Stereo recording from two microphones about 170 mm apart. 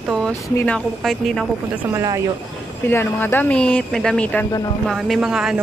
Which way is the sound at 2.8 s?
15° left (ahead or behind).